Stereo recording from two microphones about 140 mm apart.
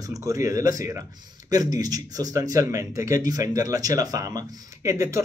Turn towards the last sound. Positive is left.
turn(degrees=-20)  # may be behind; listen again after turning